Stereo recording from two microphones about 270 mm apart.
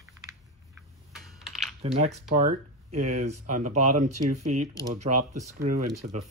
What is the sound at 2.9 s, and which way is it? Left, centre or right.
Speech, right.